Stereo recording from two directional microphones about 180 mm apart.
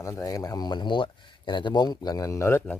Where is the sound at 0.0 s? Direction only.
20° left (ahead or behind).